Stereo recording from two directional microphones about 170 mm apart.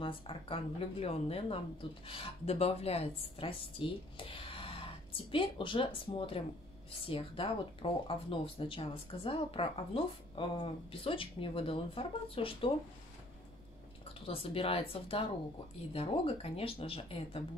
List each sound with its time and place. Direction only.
0.0 s speech: 30° left (ahead or behind)
14.2 s speech: 35° left (ahead or behind)